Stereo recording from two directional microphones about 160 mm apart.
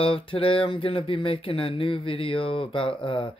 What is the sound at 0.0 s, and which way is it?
Speech, 35° left (ahead or behind).